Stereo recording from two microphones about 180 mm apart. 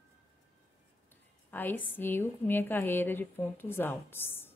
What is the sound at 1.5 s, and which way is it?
A woman's voice, 10° left (ahead or behind).